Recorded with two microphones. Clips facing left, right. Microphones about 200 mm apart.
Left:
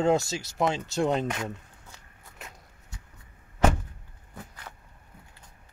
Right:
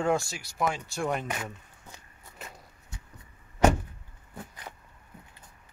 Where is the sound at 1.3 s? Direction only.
5° right (ahead or behind).